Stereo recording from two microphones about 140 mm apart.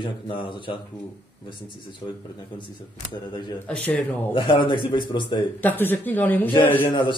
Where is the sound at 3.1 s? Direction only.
35° left (ahead or behind).